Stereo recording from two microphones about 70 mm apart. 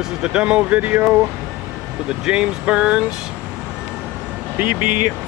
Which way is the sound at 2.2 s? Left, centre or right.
Centre.